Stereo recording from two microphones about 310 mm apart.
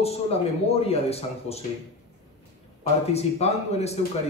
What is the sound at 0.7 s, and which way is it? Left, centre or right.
Speech, centre.